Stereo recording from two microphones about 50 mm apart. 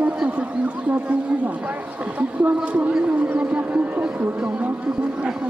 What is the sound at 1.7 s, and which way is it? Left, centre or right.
Speech, right.